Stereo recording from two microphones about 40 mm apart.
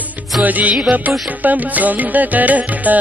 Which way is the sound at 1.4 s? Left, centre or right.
Right.